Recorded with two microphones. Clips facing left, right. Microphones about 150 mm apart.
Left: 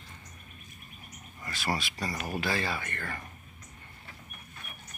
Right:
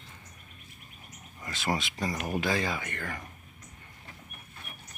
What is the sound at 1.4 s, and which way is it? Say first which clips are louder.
Speech: right 2 dB; 20° right (ahead or behind).